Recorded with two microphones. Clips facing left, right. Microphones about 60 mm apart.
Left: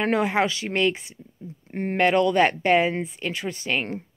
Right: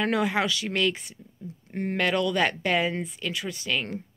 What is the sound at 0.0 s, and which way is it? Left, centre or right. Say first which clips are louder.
Speech: left 3 dB; left.